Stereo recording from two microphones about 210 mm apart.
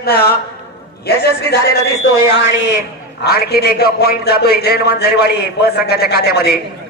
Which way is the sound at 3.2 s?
50° left (ahead or behind).